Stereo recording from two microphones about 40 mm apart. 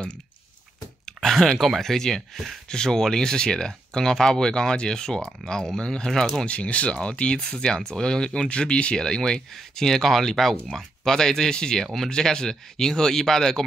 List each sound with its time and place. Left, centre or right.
1.0 s a sound: centre
1.8 s speech: centre
6.4 s speech: left; by 13.7 s centre